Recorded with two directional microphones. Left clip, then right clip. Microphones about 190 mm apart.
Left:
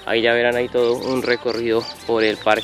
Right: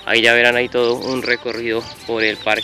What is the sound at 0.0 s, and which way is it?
Speech, 5° right (ahead or behind).